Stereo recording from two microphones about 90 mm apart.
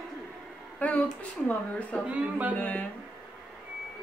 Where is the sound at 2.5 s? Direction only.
15° left (ahead or behind).